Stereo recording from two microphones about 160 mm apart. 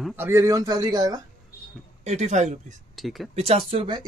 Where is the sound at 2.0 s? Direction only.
45° right (ahead or behind).